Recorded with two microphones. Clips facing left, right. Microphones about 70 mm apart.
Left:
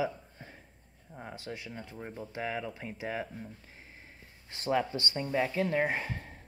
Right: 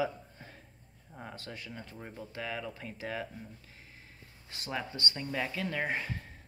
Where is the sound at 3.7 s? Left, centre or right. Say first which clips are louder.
Left 2 dB; left.